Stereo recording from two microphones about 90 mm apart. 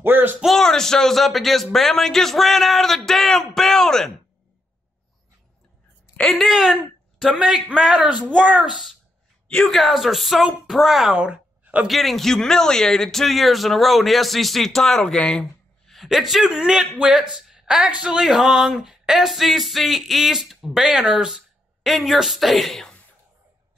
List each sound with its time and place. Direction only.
0.0 s music: 25° right (ahead or behind)
0.4 s a man's voice: centre (ahead or behind)
6.1 s a man's voice: 5° left (ahead or behind); by 11.9 s 15° right (ahead or behind)
11.9 s a man's voice: centre (ahead or behind)